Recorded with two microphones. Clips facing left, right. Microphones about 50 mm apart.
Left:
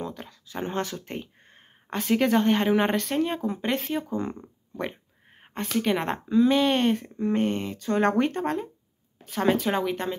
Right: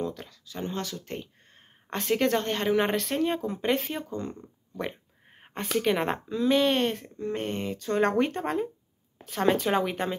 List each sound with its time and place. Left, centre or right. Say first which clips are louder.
0.0 s speech: right 2 dB; centre
0.5 s speech: left 4 dB; left
1.0 s a sound: left 1 dB; centre
1.9 s speech: left 2 dB; centre
7.4 s speech: left 3 dB; centre